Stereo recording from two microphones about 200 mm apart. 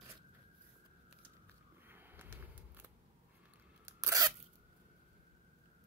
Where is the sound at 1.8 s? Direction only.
10° right (ahead or behind).